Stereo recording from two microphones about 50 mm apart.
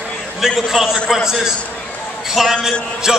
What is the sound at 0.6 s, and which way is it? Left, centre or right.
Speech, centre.